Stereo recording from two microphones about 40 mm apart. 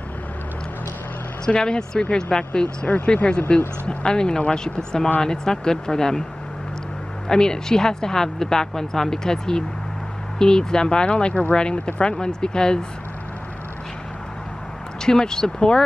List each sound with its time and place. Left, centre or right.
1.4 s speech: left
7.2 s speech: centre
15.0 s speech: centre